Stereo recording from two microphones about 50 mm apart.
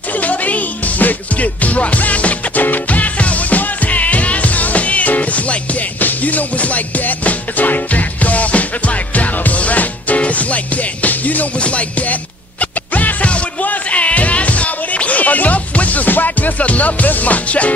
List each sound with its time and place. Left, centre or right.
0.2 s music: left